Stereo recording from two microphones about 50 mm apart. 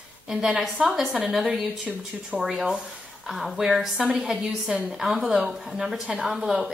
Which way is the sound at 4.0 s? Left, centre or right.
Centre.